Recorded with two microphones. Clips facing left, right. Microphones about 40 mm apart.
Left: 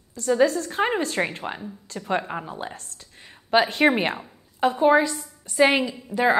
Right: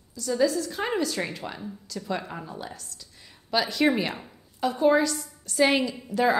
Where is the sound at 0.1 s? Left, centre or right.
Left.